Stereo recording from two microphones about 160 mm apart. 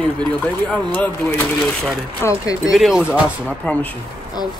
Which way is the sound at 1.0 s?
10° left (ahead or behind).